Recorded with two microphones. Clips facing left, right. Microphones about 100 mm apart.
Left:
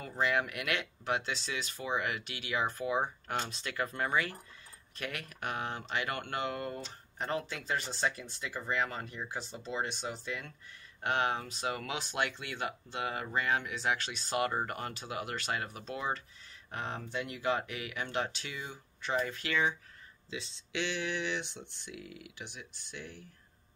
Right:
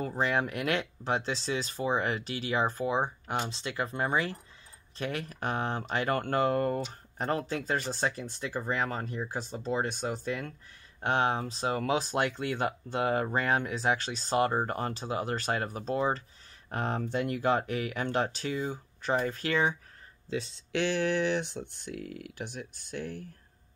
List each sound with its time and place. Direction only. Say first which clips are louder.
0.0 s speech: right 3 dB; 35° right (ahead or behind)
11.0 s speech: right 4 dB; 30° right (ahead or behind)
16.7 s speech: right 7 dB; 45° right (ahead or behind)